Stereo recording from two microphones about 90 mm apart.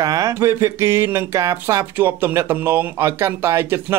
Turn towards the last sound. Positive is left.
turn(degrees=-25)  # may be behind; listen again after turning